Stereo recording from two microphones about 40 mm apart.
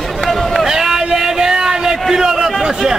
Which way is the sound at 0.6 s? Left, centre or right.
Centre.